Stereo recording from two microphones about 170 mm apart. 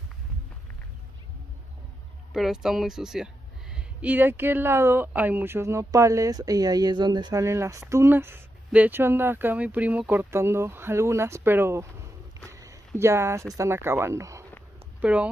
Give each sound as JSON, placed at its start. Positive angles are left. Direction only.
{"t": 2.3, "sound": "speech", "side_deg": -5}